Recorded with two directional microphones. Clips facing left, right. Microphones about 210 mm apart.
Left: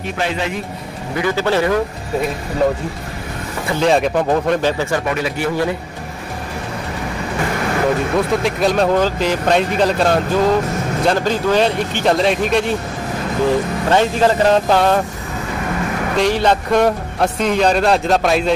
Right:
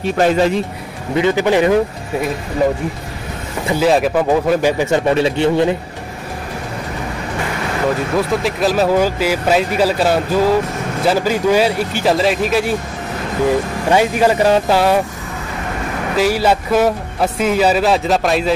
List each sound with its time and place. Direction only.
0.0 s speech: 40° right (ahead or behind)
1.1 s speech: 20° right (ahead or behind)
3.8 s a man's voice: 5° right (ahead or behind); by 5.8 s 25° right (ahead or behind)
8.3 s a man's voice: centre (ahead or behind)
13.8 s a man's voice: 10° right (ahead or behind)
16.2 s a man's voice: 5° right (ahead or behind)